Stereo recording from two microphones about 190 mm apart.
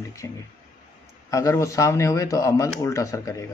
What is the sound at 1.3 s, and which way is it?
Speech, 15° left (ahead or behind).